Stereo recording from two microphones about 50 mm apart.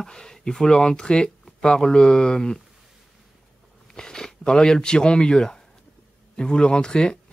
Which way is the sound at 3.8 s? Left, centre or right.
Centre.